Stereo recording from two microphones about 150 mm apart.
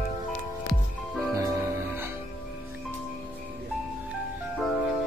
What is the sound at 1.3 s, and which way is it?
Music, 15° right (ahead or behind).